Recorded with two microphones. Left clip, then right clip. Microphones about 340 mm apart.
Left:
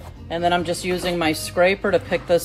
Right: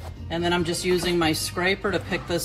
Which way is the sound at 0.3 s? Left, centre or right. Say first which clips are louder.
Left 4 dB; left.